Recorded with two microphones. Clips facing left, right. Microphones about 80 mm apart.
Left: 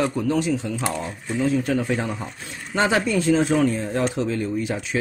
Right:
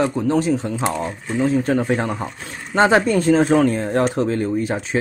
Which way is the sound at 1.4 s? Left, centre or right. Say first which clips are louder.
Right 4 dB; right.